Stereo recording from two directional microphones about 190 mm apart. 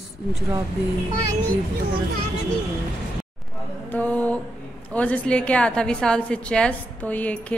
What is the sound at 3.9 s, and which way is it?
A woman's voice, 10° left (ahead or behind).